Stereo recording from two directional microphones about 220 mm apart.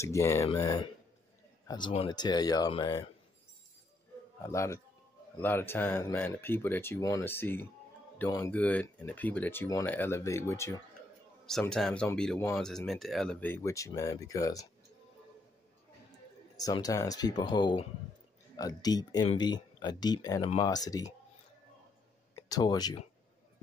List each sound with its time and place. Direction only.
0.0 s speech: 15° left (ahead or behind)
4.4 s speech: 15° left (ahead or behind)
11.4 s speech: 5° left (ahead or behind)
16.5 s speech: 15° left (ahead or behind)
22.3 s speech: 15° left (ahead or behind)